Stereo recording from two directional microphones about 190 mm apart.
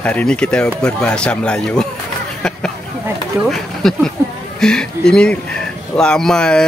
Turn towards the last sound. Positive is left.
turn(degrees=5)  # may be behind; listen again after turning